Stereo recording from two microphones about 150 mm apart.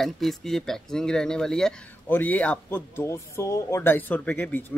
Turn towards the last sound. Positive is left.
turn(degrees=10)  # may be behind; listen again after turning